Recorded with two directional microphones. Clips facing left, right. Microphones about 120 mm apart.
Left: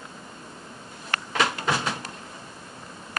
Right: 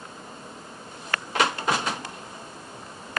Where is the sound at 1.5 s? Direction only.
20° right (ahead or behind).